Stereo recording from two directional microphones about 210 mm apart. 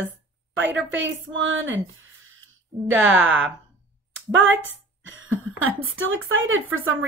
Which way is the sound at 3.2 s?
65° right (ahead or behind).